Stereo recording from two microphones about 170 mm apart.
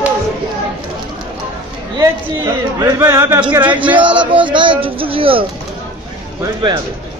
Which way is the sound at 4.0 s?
30° right (ahead or behind).